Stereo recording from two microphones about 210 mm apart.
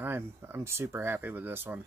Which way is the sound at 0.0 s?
10° right (ahead or behind).